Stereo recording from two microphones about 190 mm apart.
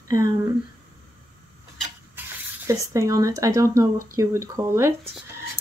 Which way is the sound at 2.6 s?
15° right (ahead or behind).